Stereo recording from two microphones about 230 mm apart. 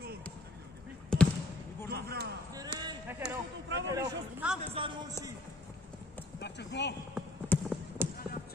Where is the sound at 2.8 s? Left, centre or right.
Centre.